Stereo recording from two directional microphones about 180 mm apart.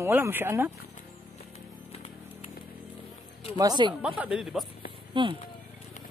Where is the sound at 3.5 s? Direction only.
25° right (ahead or behind).